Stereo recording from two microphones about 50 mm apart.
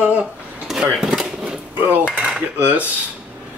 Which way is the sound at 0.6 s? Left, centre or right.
Centre.